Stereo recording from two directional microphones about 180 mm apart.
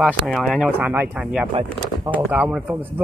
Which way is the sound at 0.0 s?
Centre (ahead or behind).